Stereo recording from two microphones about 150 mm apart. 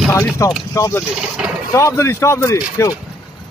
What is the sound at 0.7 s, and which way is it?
Speech, 20° left (ahead or behind).